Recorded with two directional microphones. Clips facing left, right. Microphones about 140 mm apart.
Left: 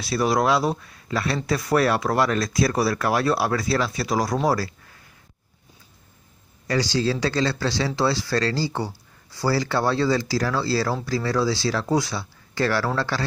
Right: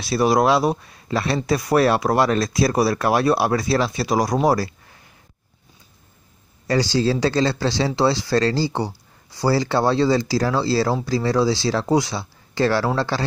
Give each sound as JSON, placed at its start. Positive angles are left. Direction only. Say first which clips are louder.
{"t": 0.0, "sound": "speech", "louder": "right 4 dB", "side_deg": -25}
{"t": 6.7, "sound": "speech", "louder": "right 3 dB", "side_deg": -30}